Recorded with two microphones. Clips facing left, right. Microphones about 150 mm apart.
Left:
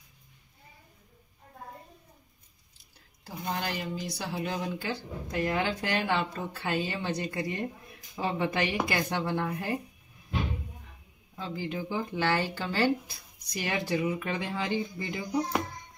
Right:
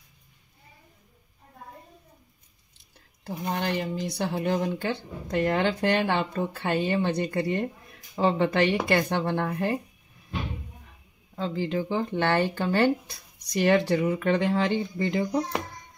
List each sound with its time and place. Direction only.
3.3 s speech: 60° right (ahead or behind)
11.3 s speech: 70° right (ahead or behind)
13.4 s speech: 70° right (ahead or behind)